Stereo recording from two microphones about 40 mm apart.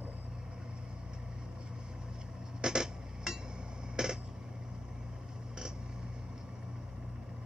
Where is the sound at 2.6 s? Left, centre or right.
Centre.